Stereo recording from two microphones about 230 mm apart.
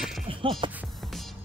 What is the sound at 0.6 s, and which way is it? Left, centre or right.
Music, right.